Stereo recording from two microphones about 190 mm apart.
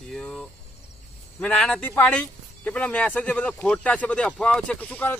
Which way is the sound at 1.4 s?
5° left (ahead or behind).